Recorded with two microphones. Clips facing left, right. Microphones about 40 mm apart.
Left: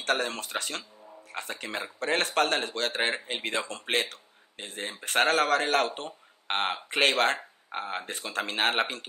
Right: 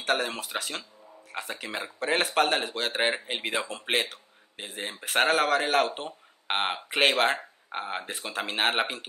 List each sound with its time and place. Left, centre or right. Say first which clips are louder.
0.0 s speech: right 1 dB; centre